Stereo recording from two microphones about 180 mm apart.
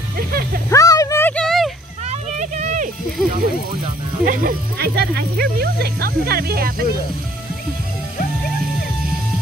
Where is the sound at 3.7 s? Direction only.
50° right (ahead or behind).